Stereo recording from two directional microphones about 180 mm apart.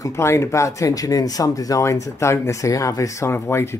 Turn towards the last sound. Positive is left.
turn(degrees=15)  # may be behind; listen again after turning